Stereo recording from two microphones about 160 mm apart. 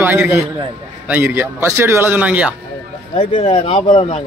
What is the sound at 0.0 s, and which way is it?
A man's voice, 10° right (ahead or behind).